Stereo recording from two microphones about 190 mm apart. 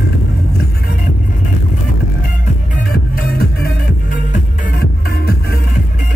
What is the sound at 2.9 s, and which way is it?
Music, 50° left (ahead or behind).